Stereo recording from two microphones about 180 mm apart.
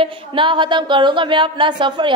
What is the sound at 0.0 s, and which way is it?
Speech, 25° right (ahead or behind).